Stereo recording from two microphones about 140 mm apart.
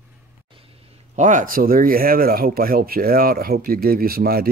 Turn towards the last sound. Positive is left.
turn(degrees=-90)